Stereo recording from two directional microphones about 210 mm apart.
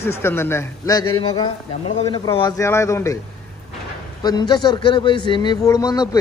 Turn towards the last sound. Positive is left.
turn(degrees=15)  # may be behind; listen again after turning